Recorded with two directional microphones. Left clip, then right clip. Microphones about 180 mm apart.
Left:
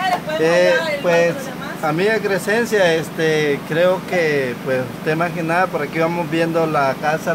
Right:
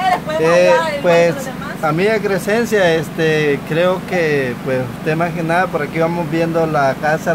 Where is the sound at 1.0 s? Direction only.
15° right (ahead or behind).